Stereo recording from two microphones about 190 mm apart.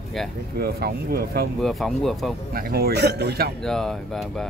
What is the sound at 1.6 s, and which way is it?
Speech, centre (ahead or behind).